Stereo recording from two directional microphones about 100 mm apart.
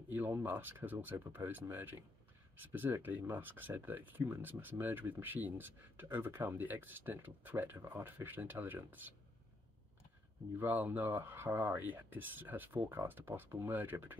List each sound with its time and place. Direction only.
0.1 s speech: 20° right (ahead or behind)
10.6 s speech: 15° right (ahead or behind)